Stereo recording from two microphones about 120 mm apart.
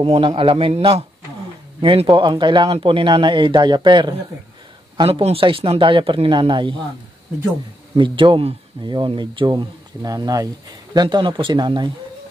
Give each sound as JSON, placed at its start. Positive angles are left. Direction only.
{"t": 0.0, "sound": "speech", "side_deg": -50}
{"t": 7.9, "sound": "speech", "side_deg": -45}